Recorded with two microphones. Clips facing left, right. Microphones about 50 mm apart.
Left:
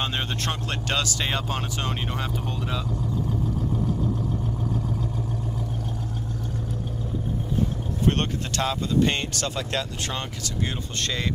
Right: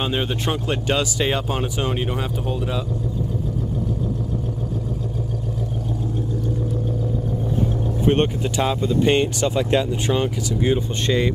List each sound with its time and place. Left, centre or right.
0.0 s speech: centre
8.0 s speech: centre